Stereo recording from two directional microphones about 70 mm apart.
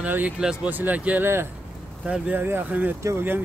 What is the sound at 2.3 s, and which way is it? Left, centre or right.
Speech, right.